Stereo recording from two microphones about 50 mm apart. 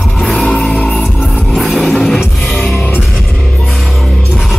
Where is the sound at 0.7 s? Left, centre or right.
Left.